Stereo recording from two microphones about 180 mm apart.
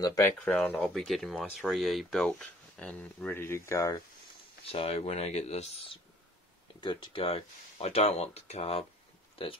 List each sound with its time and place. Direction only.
0.0 s speech: 20° left (ahead or behind)
0.5 s speech: 5° left (ahead or behind)
4.6 s speech: 35° left (ahead or behind)